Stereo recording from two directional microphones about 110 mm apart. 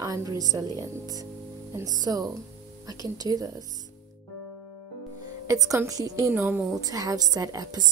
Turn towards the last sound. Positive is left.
turn(degrees=-35)  # may be behind; listen again after turning